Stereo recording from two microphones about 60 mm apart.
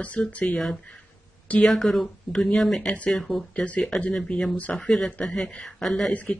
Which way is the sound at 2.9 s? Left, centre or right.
Left.